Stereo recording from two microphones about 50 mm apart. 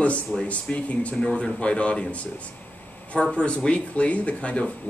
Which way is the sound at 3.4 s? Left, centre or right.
Left.